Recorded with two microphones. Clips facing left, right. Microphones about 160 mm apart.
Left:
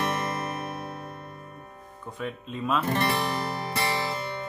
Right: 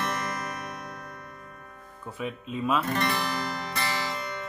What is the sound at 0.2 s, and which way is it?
Music, 25° left (ahead or behind).